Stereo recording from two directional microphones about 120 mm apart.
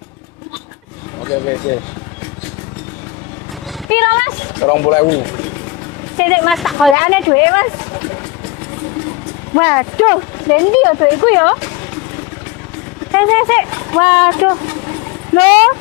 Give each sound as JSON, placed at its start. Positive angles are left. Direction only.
{"t": 1.2, "sound": "speech", "side_deg": 20}
{"t": 3.9, "sound": "speech", "side_deg": 20}
{"t": 6.5, "sound": "speech", "side_deg": 0}
{"t": 7.2, "sound": "speech", "side_deg": 20}
{"t": 9.6, "sound": "speech", "side_deg": 25}
{"t": 13.1, "sound": "speech", "side_deg": 10}